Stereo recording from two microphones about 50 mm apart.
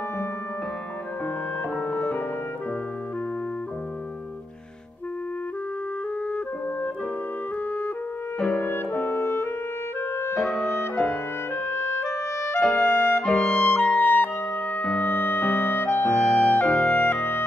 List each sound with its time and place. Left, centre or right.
1.8 s music: left
8.5 s clarinet: left
11.1 s clarinet: left
13.4 s clarinet: left
16.3 s music: left